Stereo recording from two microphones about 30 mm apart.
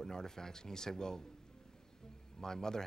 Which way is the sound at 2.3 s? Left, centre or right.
Centre.